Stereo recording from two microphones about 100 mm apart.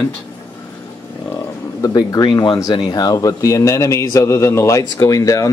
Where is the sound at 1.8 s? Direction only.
40° left (ahead or behind).